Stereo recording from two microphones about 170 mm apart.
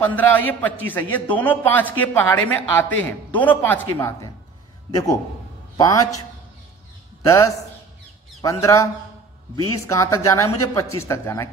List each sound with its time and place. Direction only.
0.0 s a man's voice: 10° left (ahead or behind)
5.8 s a man's voice: 20° left (ahead or behind)
7.2 s a man's voice: 20° left (ahead or behind)
9.8 s a man's voice: 20° left (ahead or behind)